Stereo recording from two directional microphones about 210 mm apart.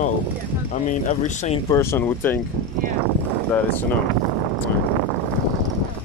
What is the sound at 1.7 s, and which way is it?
Speech, 10° left (ahead or behind).